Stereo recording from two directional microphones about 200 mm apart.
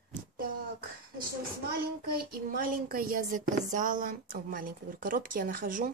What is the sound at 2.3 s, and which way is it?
Speech, 45° right (ahead or behind).